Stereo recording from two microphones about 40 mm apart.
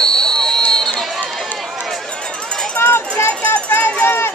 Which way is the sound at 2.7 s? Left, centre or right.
Left.